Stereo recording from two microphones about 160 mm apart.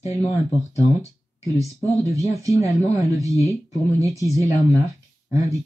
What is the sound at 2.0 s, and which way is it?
Speech, 20° right (ahead or behind).